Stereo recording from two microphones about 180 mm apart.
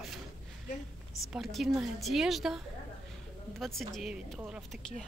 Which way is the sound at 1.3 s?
Centre (ahead or behind).